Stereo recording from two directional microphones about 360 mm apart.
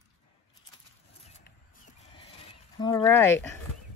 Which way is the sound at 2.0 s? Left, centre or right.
Centre.